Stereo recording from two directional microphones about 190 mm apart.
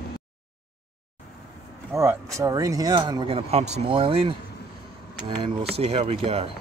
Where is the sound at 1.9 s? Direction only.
15° right (ahead or behind); by 6.5 s 30° right (ahead or behind).